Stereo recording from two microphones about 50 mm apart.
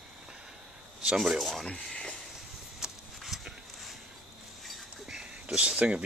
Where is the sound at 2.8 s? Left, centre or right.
Centre.